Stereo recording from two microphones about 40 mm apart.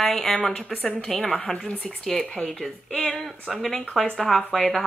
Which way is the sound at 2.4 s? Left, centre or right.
Centre.